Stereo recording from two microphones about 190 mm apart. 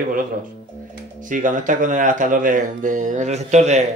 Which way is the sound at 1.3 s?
45° right (ahead or behind).